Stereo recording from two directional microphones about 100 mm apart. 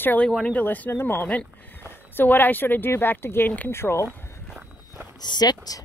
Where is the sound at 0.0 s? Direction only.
15° left (ahead or behind).